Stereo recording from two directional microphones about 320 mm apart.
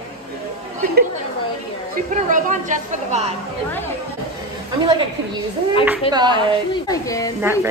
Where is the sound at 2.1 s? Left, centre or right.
Right.